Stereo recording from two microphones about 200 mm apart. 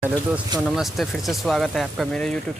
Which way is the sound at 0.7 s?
Centre (ahead or behind).